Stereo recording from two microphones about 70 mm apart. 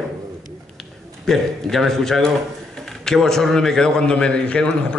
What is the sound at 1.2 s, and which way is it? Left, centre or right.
A man's voice, centre.